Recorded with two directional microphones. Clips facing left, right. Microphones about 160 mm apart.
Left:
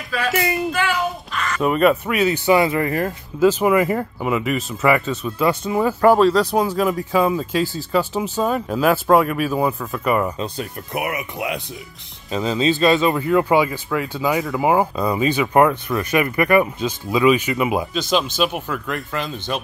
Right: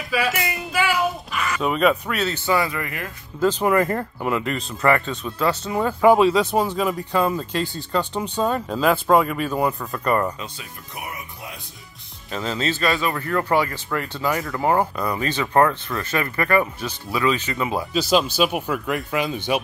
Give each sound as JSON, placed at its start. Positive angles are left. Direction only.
{"t": 0.1, "sound": "speech", "side_deg": -10}
{"t": 0.7, "sound": "a sound", "side_deg": -10}
{"t": 1.6, "sound": "speech", "side_deg": 0}
{"t": 3.3, "sound": "speech", "side_deg": 10}
{"t": 10.6, "sound": "speech", "side_deg": 65}
{"t": 12.3, "sound": "speech", "side_deg": 15}
{"t": 17.9, "sound": "speech", "side_deg": -5}